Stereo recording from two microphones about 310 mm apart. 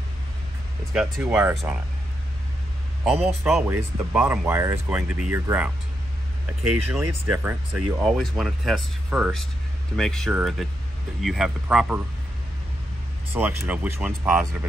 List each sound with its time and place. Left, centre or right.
0.9 s speech: centre
3.4 s speech: centre
6.6 s speech: right
6.9 s speech: centre
13.3 s speech: centre